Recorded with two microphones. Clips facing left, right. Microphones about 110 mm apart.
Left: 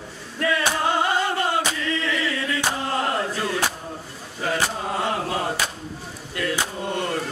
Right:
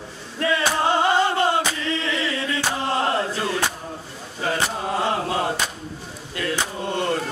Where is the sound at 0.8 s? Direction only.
30° right (ahead or behind).